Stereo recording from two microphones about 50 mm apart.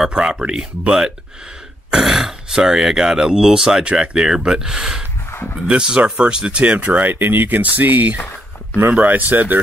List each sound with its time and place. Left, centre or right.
0.1 s speech: centre
6.6 s speech: right